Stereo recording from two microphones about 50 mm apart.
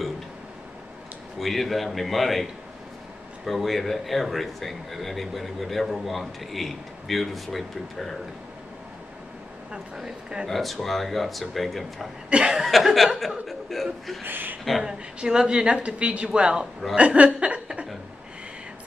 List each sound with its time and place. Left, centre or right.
1.4 s speech: centre
3.4 s speech: centre
9.9 s speech: centre
12.3 s speech: centre
12.6 s speech: centre
14.2 s speech: right
14.8 s speech: centre